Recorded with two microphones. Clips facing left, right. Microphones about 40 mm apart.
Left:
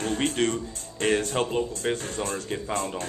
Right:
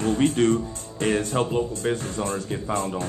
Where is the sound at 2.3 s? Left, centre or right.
Left.